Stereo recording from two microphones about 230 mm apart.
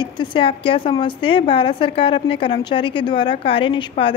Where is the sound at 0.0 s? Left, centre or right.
Left.